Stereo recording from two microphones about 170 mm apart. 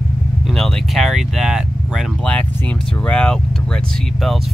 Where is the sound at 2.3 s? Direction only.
10° left (ahead or behind).